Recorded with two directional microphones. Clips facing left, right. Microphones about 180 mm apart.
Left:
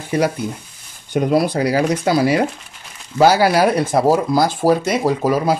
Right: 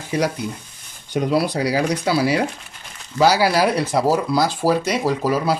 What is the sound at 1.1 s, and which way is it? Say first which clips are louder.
Speech: left 3 dB; 50° left (ahead or behind).